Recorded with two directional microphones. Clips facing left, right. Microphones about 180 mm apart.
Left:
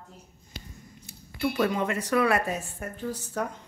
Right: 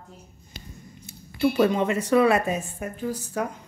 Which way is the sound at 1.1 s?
25° right (ahead or behind).